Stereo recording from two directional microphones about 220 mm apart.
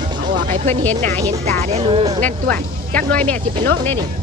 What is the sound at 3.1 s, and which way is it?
Speech, 5° left (ahead or behind).